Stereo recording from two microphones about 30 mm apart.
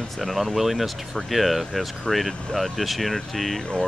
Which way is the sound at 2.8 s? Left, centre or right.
Centre.